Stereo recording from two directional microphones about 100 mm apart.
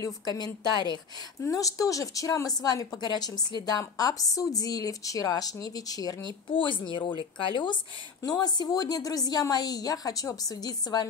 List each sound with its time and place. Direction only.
0.0 s a woman's voice: 40° left (ahead or behind)
1.4 s a woman's voice: 35° left (ahead or behind)
6.5 s speech: 55° left (ahead or behind)
8.2 s a woman's voice: 40° left (ahead or behind)